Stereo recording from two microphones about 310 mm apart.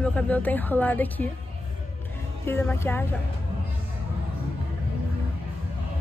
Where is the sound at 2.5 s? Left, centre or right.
Centre.